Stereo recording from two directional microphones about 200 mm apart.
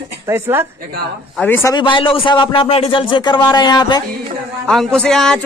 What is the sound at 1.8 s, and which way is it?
A man's voice, 25° left (ahead or behind).